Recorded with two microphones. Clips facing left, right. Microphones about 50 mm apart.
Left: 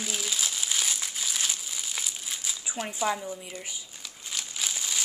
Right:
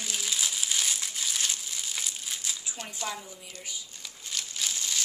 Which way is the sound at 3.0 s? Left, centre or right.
Left.